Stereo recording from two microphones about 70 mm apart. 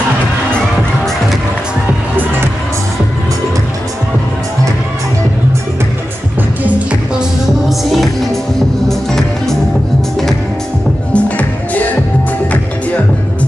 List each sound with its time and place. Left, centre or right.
6.6 s music: centre
7.9 s music: centre
11.2 s music: left